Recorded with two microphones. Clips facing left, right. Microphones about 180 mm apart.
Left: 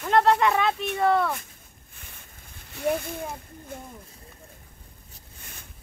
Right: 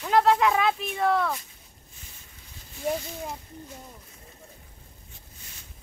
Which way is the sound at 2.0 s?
60° left (ahead or behind).